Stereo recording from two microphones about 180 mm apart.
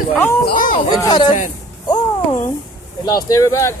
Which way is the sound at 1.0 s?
25° left (ahead or behind).